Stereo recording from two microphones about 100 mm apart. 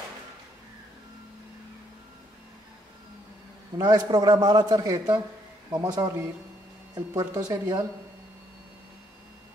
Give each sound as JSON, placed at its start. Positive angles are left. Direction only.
{"t": 3.7, "sound": "a man's voice", "side_deg": -40}
{"t": 7.2, "sound": "speech", "side_deg": -40}